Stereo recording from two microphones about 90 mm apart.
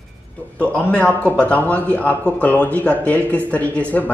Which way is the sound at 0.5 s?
15° left (ahead or behind).